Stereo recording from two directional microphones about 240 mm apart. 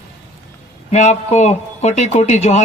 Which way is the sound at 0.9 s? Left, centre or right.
Left.